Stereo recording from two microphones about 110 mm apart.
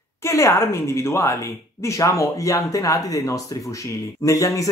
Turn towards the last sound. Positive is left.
turn(degrees=30)  # may be behind; listen again after turning